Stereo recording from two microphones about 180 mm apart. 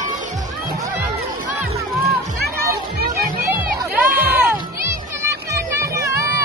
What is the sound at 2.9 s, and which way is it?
Music, 60° right (ahead or behind).